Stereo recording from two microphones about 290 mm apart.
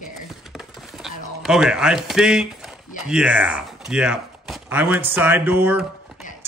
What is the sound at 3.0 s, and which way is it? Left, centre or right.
Speech, centre.